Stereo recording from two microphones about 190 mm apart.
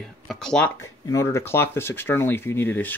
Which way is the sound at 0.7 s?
15° left (ahead or behind).